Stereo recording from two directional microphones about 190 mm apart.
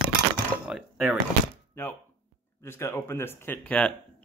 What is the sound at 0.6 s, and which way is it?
Speech, 5° right (ahead or behind).